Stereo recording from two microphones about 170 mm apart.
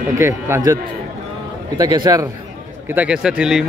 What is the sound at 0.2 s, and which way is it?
Speech, 15° right (ahead or behind).